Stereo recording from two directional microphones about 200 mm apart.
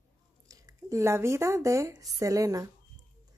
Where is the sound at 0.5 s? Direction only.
15° right (ahead or behind).